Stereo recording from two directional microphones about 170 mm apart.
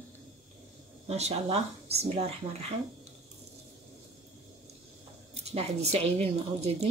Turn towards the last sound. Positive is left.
turn(degrees=-40)  # may be behind; listen again after turning